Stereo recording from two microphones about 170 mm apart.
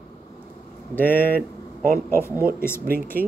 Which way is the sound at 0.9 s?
10° left (ahead or behind).